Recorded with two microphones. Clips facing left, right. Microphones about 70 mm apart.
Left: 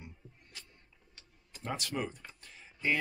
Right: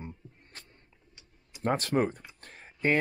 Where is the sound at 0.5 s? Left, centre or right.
Right.